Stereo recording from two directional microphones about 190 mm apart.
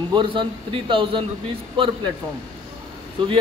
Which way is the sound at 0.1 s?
25° right (ahead or behind).